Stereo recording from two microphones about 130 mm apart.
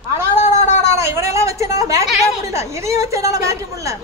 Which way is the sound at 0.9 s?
20° right (ahead or behind).